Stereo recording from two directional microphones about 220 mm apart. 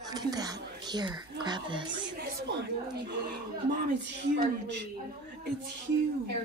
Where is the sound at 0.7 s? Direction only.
20° right (ahead or behind).